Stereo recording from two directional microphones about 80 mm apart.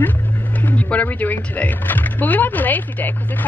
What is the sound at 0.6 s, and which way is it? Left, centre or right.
Speech, centre.